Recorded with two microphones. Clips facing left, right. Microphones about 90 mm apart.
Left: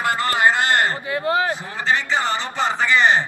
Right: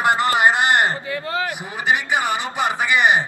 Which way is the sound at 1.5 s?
15° right (ahead or behind).